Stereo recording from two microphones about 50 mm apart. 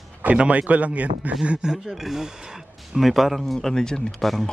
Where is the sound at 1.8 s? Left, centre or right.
Centre.